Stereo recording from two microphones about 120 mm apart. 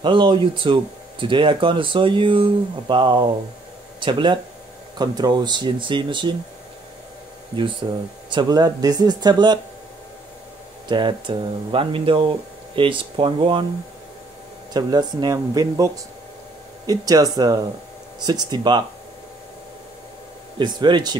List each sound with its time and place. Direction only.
0.0 s speech: 45° right (ahead or behind)
7.8 s speech: 35° right (ahead or behind)
10.9 s speech: 40° right (ahead or behind)
14.7 s speech: 35° right (ahead or behind)
20.5 s speech: 40° right (ahead or behind)